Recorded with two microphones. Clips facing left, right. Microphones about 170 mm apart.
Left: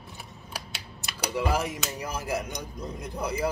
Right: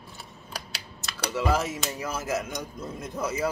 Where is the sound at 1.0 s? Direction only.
15° left (ahead or behind).